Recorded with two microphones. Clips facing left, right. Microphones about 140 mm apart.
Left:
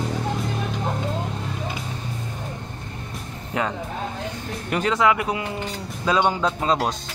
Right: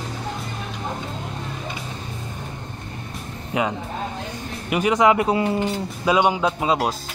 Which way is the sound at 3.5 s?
10° right (ahead or behind).